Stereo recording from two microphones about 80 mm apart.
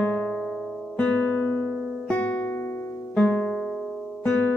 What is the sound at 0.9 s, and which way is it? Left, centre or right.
Guitar, centre.